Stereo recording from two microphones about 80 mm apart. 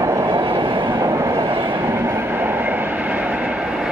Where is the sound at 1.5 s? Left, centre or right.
Right.